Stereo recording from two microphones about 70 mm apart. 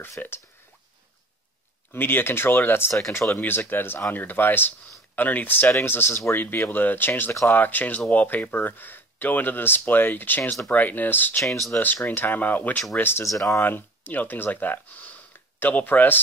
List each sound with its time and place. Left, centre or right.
0.2 s speech: left
1.9 s speech: left
11.4 s speech: centre
11.8 s speech: left
13.2 s speech: left
13.6 s speech: left